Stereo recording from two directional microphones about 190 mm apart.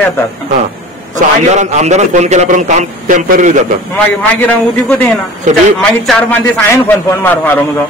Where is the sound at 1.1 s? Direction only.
40° right (ahead or behind).